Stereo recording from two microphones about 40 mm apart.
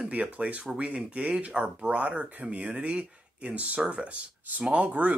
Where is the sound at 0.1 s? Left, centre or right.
Right.